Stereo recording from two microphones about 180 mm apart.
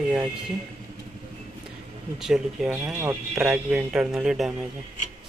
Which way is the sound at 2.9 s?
15° right (ahead or behind).